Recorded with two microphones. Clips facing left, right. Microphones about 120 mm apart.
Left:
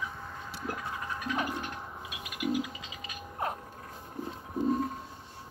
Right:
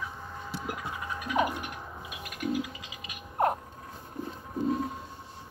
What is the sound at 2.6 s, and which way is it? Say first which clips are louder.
Scratch: even; 30° left (ahead or behind).